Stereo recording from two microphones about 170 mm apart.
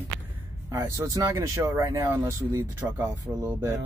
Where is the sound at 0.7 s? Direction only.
20° right (ahead or behind).